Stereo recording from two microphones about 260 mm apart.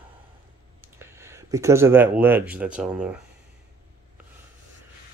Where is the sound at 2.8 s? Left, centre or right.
Centre.